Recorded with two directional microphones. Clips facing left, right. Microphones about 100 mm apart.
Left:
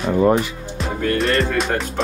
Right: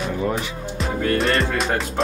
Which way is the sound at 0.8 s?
Centre (ahead or behind).